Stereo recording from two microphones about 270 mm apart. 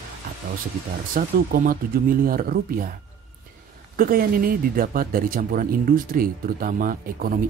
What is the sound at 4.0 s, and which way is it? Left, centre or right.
Speech, right.